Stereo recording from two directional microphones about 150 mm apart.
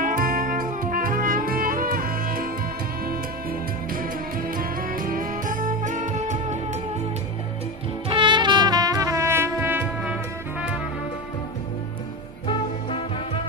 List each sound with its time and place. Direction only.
0.0 s music: 65° right (ahead or behind)
3.9 s music: 70° right (ahead or behind); by 6.8 s 50° right (ahead or behind)
8.1 s music: 30° right (ahead or behind); by 10.1 s 15° right (ahead or behind)
12.4 s music: 40° left (ahead or behind)